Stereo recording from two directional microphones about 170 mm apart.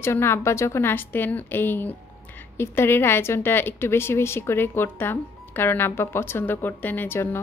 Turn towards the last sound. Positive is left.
turn(degrees=10)  # may be behind; listen again after turning